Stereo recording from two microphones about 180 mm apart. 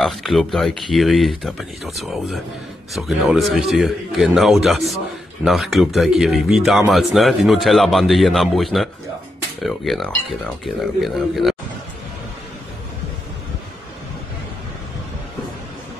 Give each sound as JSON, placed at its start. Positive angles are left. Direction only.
{"t": 0.0, "sound": "speech", "side_deg": 0}